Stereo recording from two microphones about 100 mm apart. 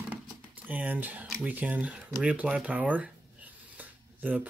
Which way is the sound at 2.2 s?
10° right (ahead or behind).